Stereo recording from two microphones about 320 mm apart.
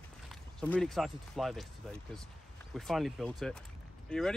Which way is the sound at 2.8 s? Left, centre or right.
Centre.